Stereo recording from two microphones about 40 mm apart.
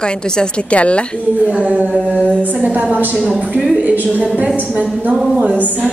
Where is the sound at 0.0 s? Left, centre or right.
Left.